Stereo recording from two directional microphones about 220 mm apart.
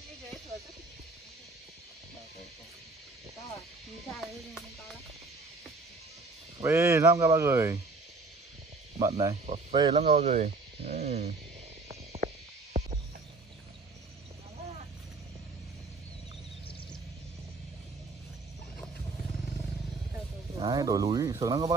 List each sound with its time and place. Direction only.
4.1 s speech: centre (ahead or behind)
6.6 s speech: 10° right (ahead or behind)
9.0 s speech: 15° right (ahead or behind)
11.9 s stomach rumble: 30° right (ahead or behind)
12.7 s music: 30° right (ahead or behind)
20.5 s snake: 20° right (ahead or behind)